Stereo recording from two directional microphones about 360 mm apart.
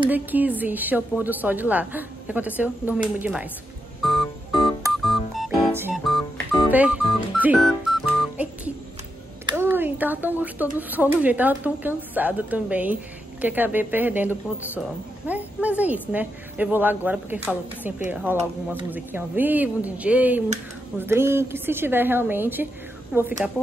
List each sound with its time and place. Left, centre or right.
0.0 s a woman's voice: centre
4.0 s music: centre
9.5 s a woman's voice: centre